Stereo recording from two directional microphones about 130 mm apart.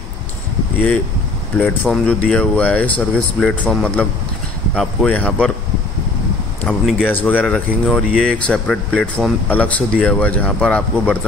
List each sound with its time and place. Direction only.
1.6 s speech: 10° left (ahead or behind)
6.6 s speech: 5° left (ahead or behind)